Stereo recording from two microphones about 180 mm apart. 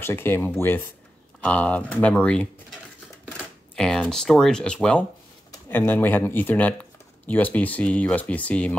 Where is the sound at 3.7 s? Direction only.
Centre (ahead or behind).